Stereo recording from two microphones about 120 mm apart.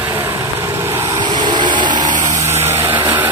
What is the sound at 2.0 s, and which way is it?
Vehicle, 90° right.